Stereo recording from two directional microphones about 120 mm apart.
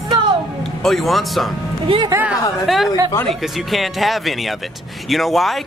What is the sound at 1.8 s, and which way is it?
Speech, 45° right (ahead or behind).